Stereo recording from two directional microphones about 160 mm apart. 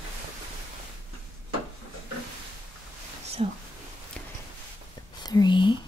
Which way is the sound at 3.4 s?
40° right (ahead or behind).